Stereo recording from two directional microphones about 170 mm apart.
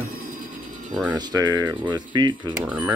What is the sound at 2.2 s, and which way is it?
Speech, 25° right (ahead or behind).